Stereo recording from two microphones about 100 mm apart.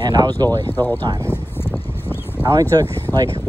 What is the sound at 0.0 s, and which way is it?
Speech, 45° right (ahead or behind).